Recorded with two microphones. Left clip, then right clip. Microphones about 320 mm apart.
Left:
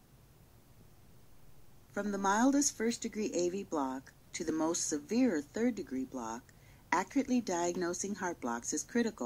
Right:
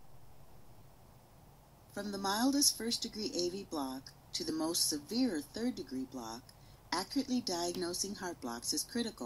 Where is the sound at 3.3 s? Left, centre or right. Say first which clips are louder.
Left 4 dB; centre.